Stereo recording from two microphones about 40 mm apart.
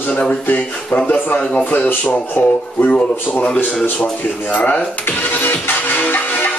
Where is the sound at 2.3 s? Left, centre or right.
Left.